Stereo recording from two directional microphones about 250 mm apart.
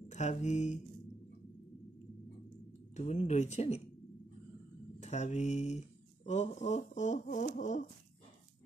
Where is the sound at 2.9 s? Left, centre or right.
Left.